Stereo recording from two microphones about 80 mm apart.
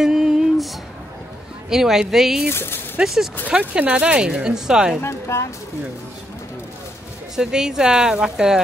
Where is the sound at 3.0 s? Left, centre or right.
Centre.